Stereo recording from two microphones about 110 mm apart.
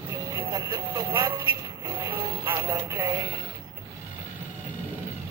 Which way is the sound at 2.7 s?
25° right (ahead or behind).